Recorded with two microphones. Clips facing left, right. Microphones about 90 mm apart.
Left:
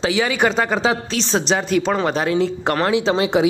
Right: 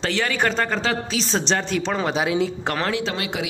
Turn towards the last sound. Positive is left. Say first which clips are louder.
# left 9 dB
turn(degrees=25)  # may be behind; listen again after turning